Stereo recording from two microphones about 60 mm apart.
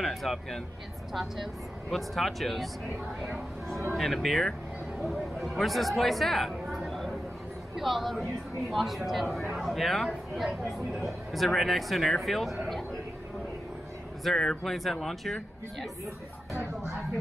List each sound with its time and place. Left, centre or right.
0.0 s a woman's voice: centre
14.2 s a woman's voice: centre